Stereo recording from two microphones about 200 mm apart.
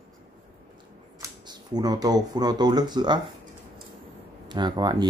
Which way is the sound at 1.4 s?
20° right (ahead or behind).